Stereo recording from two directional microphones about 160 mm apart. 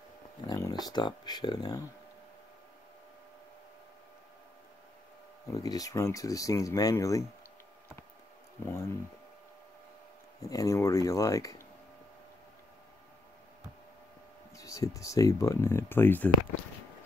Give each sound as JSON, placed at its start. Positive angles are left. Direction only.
{"t": 0.5, "sound": "speech", "side_deg": 20}
{"t": 5.5, "sound": "speech", "side_deg": 20}
{"t": 8.6, "sound": "speech", "side_deg": 15}
{"t": 10.4, "sound": "speech", "side_deg": 20}
{"t": 14.6, "sound": "speech", "side_deg": 20}